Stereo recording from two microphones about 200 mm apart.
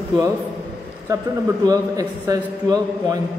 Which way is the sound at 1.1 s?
20° right (ahead or behind).